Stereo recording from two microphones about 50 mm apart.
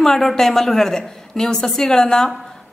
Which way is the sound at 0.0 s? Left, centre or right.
Centre.